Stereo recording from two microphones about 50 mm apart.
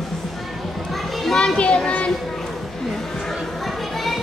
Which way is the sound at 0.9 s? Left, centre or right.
Centre.